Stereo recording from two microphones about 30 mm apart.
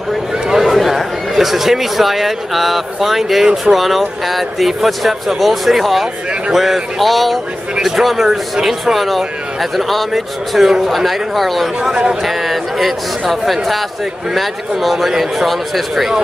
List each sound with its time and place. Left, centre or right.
0.5 s a sound: centre
1.4 s a man's voice: centre
7.7 s a sound: centre
8.0 s a man's voice: centre
11.9 s a man's voice: right
12.2 s a man's voice: centre